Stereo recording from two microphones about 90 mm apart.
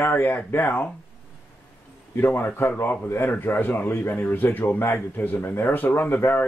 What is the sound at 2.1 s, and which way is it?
A man's voice, 25° left (ahead or behind).